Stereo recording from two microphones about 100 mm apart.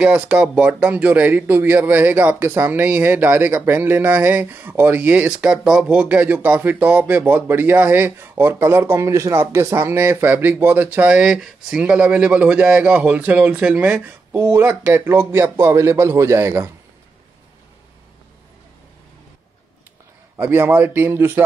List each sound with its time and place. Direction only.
0.0 s speech: 10° right (ahead or behind)
20.3 s speech: 20° right (ahead or behind)